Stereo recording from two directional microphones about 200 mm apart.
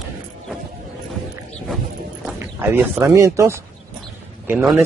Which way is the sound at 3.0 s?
15° right (ahead or behind).